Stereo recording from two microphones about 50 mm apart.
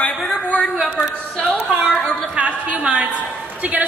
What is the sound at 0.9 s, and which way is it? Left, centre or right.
Speech, centre.